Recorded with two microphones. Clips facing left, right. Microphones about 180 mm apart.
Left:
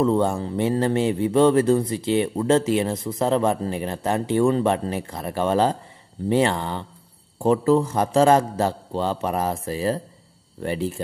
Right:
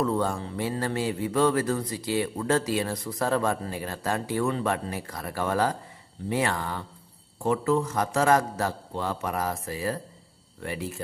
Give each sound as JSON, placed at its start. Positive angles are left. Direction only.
{"t": 0.0, "sound": "speech", "side_deg": 25}